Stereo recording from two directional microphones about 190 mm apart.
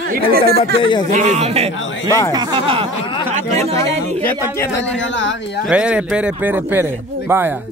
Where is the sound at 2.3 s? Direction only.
20° right (ahead or behind).